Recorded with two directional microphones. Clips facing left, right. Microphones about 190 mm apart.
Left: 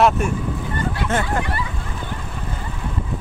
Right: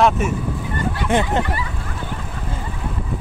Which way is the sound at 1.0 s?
15° right (ahead or behind).